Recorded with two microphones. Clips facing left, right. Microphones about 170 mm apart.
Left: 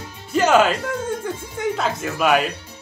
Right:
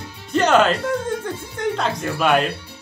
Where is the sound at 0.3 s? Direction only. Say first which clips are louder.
Even; 5° left (ahead or behind).